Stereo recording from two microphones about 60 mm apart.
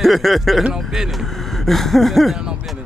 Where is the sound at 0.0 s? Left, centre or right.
Centre.